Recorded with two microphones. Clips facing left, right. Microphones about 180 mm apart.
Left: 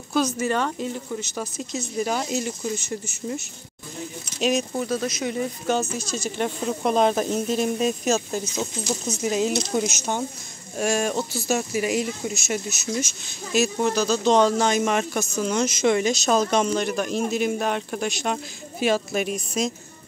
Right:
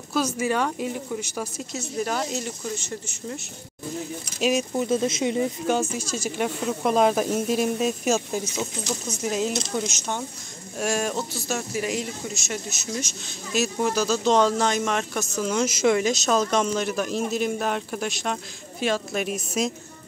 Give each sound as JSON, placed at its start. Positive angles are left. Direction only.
{"t": 0.1, "sound": "speech", "side_deg": -10}
{"t": 4.4, "sound": "speech", "side_deg": -5}
{"t": 4.8, "sound": "speech", "side_deg": -25}
{"t": 5.7, "sound": "speech", "side_deg": -10}
{"t": 8.5, "sound": "speech", "side_deg": 5}